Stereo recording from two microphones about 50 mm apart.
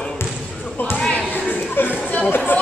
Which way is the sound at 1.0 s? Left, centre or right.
Centre.